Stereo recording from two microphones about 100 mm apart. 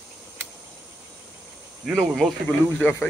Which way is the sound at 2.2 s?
Centre (ahead or behind).